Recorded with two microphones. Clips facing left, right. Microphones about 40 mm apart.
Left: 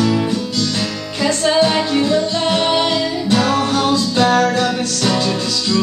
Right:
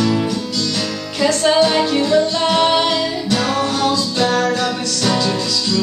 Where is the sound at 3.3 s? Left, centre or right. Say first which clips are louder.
Left 3 dB; centre.